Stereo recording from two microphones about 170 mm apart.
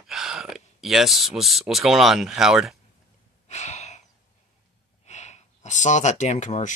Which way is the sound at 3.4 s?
40° left (ahead or behind).